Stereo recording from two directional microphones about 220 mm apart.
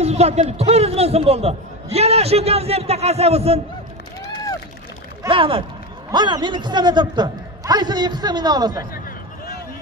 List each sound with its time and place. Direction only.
0.0 s a man's voice: 30° right (ahead or behind)
5.2 s a man's voice: 25° right (ahead or behind)